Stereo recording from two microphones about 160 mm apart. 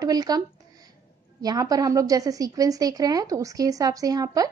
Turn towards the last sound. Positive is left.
turn(degrees=-20)  # may be behind; listen again after turning